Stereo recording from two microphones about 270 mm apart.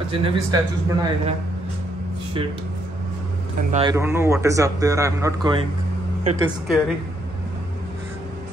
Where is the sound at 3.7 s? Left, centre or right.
Centre.